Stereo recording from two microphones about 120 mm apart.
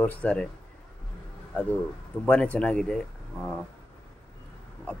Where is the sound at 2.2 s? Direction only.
10° left (ahead or behind).